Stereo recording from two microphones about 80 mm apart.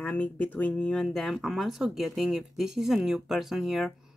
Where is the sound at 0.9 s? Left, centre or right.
Centre.